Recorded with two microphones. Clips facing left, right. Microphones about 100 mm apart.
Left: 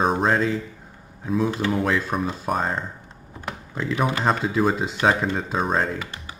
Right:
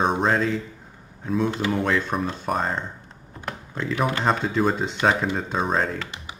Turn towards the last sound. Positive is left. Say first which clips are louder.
# left 1 dB
turn(degrees=0)  # may be behind; listen again after turning